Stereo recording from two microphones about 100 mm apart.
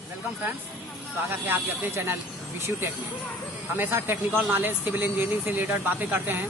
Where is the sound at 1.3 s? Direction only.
20° right (ahead or behind).